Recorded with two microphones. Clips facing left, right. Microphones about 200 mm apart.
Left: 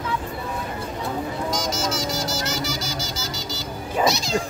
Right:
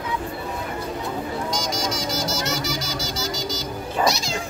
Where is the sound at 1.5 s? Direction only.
Centre (ahead or behind).